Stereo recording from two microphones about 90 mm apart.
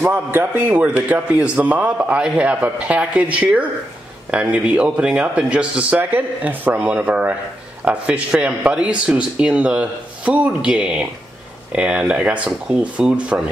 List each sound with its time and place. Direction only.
0.0 s a man's voice: 25° right (ahead or behind)